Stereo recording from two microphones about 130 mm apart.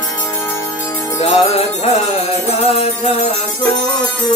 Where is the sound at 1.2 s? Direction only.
50° left (ahead or behind).